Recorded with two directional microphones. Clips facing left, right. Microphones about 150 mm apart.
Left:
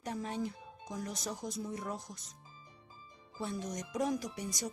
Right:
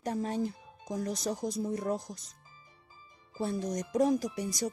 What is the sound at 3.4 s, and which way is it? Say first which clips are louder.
Speech: right 6 dB; 35° right (ahead or behind).